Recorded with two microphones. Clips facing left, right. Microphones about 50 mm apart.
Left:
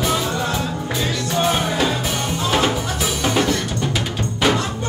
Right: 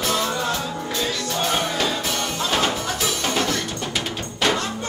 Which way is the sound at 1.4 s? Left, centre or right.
Centre.